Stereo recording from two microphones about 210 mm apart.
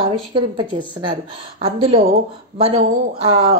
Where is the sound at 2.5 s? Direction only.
25° right (ahead or behind).